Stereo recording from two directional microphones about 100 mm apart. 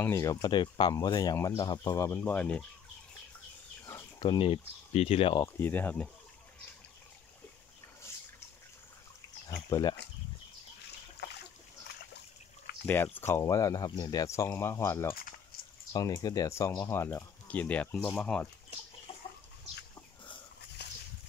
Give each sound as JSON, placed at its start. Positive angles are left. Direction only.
{"t": 0.0, "sound": "speech", "side_deg": 30}
{"t": 0.5, "sound": "speech", "side_deg": 50}
{"t": 2.2, "sound": "speech", "side_deg": 15}
{"t": 4.2, "sound": "speech", "side_deg": 55}
{"t": 5.6, "sound": "speech", "side_deg": 20}
{"t": 9.7, "sound": "speech", "side_deg": 40}
{"t": 12.8, "sound": "speech", "side_deg": 20}
{"t": 15.9, "sound": "speech", "side_deg": 40}
{"t": 17.5, "sound": "speech", "side_deg": 15}